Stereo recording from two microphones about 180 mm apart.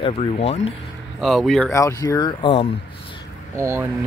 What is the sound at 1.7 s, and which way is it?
Speech, 15° left (ahead or behind).